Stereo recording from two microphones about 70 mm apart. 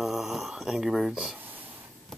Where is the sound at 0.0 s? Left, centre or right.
Centre.